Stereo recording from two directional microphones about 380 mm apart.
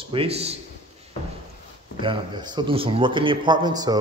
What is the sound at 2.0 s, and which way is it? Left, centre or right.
Speech, centre.